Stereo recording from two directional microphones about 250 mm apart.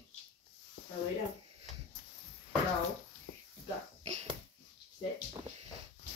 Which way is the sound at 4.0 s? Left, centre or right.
Right.